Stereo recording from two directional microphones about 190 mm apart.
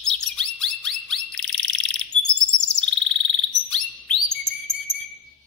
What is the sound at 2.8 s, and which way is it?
Frog, 5° left (ahead or behind).